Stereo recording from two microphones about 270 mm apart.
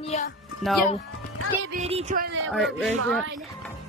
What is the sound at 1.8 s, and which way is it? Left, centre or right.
Speech, right.